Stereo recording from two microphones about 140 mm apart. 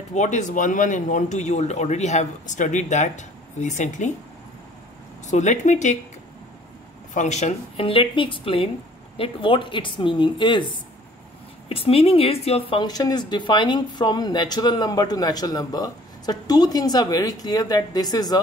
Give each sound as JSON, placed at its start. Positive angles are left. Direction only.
{"t": 0.1, "sound": "speech", "side_deg": 60}
{"t": 5.2, "sound": "speech", "side_deg": 60}
{"t": 7.2, "sound": "speech", "side_deg": 55}